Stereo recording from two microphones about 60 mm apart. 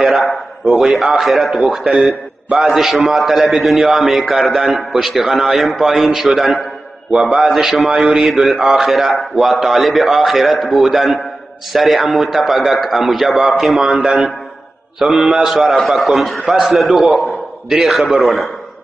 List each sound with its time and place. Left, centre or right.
0.0 s a sound: centre
0.9 s a man's voice: centre
8.0 s a man's voice: centre
8.3 s a man's voice: centre
13.9 s a man's voice: centre
15.0 s a man's voice: centre